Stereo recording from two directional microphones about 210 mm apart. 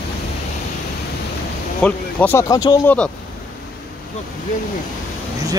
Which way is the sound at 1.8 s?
10° left (ahead or behind).